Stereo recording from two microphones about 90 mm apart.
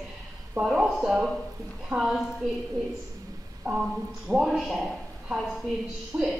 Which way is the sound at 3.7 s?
5° right (ahead or behind).